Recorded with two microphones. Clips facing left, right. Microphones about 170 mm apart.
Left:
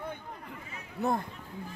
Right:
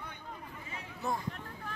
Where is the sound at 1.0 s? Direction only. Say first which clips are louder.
Left 6 dB; 60° left (ahead or behind).